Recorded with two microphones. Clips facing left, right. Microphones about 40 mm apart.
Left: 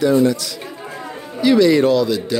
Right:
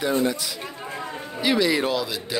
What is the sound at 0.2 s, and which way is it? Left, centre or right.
A man's voice, centre.